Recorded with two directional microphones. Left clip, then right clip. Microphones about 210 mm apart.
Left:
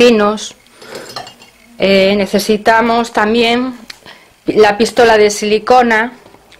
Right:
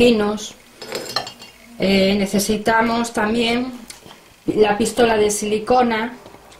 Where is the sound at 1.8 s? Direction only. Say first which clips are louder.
Left 7 dB; 5° left (ahead or behind).